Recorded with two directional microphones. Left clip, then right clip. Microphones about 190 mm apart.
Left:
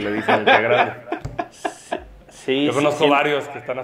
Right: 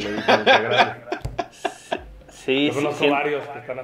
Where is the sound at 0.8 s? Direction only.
45° right (ahead or behind).